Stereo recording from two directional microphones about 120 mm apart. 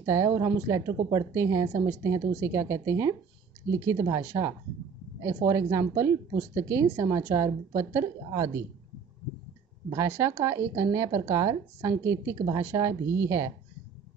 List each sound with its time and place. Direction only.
0.0 s speech: 25° right (ahead or behind)
9.8 s speech: 25° right (ahead or behind)